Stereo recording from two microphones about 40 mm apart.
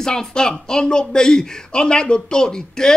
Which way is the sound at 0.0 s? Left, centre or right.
Centre.